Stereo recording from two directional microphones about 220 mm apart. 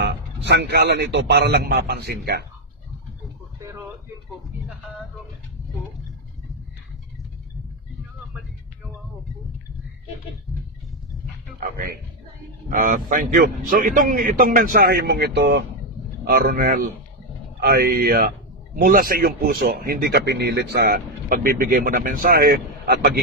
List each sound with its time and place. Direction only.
0.0 s speech: 50° right (ahead or behind)
3.6 s a sound: 10° right (ahead or behind)
12.6 s a man's voice: 40° right (ahead or behind)